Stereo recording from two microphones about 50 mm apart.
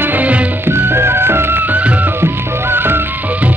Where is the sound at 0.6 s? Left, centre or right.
Right.